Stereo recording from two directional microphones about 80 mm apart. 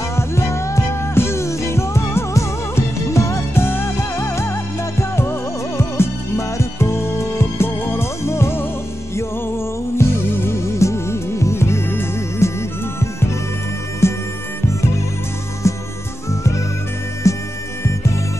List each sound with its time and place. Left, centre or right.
0.1 s music: left
9.9 s music: left
14.0 s music: left
15.7 s music: left